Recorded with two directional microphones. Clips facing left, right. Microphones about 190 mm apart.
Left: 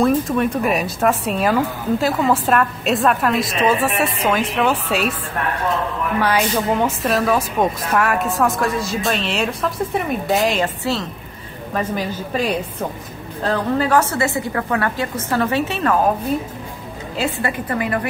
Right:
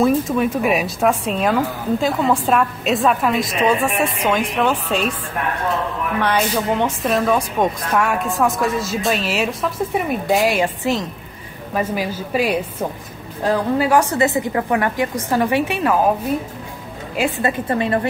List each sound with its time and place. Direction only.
0.0 s a woman's voice: centre (ahead or behind)
6.2 s a woman's voice: 5° left (ahead or behind)
10.6 s a woman's voice: 15° right (ahead or behind)
17.2 s a woman's voice: 25° right (ahead or behind)